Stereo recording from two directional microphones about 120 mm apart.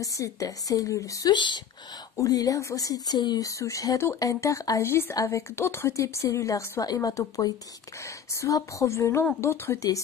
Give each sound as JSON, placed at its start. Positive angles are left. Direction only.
{"t": 0.0, "sound": "speech", "side_deg": 30}
{"t": 1.3, "sound": "speech", "side_deg": 40}
{"t": 2.1, "sound": "speech", "side_deg": 30}